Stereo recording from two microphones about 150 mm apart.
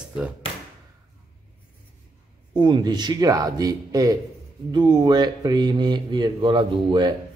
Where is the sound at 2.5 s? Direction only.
30° right (ahead or behind).